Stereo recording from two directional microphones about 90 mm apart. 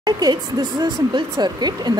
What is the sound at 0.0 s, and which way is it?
Speech, 50° right (ahead or behind).